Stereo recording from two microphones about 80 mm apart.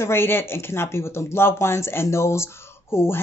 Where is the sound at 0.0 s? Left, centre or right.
Left.